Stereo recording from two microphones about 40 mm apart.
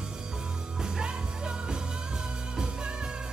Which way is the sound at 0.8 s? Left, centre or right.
Right.